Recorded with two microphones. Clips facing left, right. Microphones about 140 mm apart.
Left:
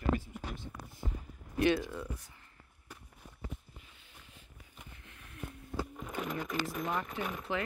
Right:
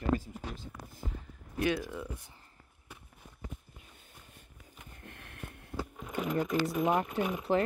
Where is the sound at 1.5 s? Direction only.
5° right (ahead or behind).